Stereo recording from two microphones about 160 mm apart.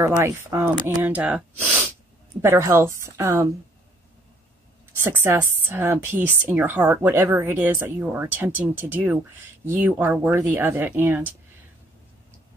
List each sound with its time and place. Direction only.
0.0 s speech: 20° right (ahead or behind)
5.0 s speech: 15° right (ahead or behind)